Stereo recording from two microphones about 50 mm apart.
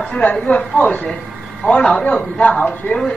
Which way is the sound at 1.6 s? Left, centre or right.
Centre.